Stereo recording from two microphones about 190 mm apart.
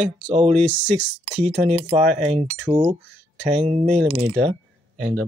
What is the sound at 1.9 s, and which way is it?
Speech, 35° right (ahead or behind).